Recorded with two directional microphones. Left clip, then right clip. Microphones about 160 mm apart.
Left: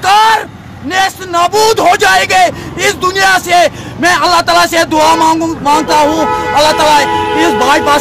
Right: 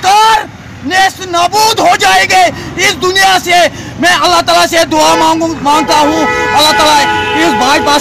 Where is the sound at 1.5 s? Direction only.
35° left (ahead or behind).